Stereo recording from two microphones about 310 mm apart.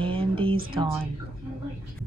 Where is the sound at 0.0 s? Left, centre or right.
Centre.